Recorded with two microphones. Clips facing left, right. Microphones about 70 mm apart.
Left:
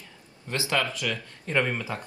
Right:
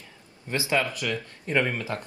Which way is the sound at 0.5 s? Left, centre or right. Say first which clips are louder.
Right 2 dB; right.